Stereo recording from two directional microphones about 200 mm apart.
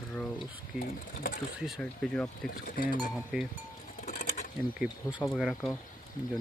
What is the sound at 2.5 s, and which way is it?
Speech, 45° left (ahead or behind).